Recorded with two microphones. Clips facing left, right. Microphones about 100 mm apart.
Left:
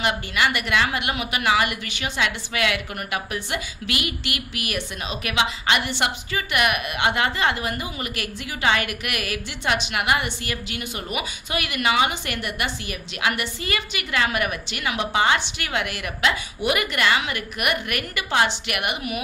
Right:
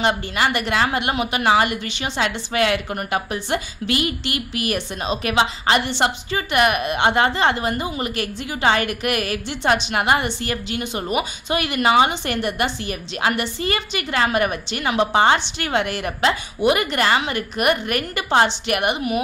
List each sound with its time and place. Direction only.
0.0 s a woman's voice: 30° right (ahead or behind)